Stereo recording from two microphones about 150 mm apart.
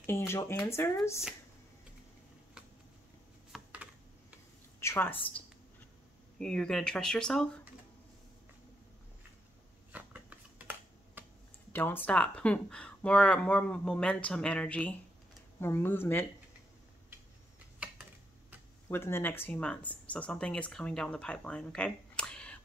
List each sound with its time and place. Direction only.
0.0 s speech: 15° left (ahead or behind)
3.5 s computer keyboard: 10° right (ahead or behind)
4.7 s a woman's voice: 15° left (ahead or behind)
9.9 s a sound: 10° right (ahead or behind)
11.7 s speech: 15° left (ahead or behind)
18.9 s speech: 15° left (ahead or behind)